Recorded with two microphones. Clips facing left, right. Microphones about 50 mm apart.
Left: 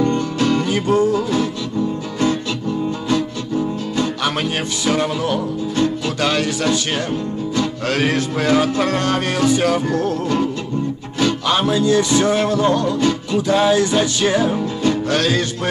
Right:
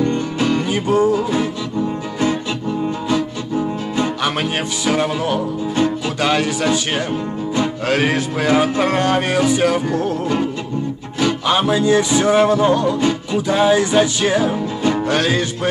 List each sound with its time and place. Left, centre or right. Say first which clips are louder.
0.0 s music: left 1 dB; centre
4.2 s music: right 1 dB; centre
5.8 s music: right 1 dB; centre
14.2 s music: even; centre
14.8 s music: right 1 dB; centre